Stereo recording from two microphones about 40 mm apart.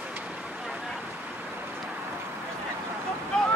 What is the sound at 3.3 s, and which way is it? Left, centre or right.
Boat, centre.